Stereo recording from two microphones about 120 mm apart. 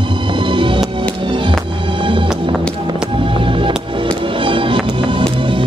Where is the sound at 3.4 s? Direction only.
45° right (ahead or behind).